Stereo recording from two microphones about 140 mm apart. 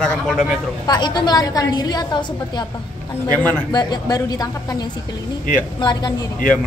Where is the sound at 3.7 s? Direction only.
30° left (ahead or behind).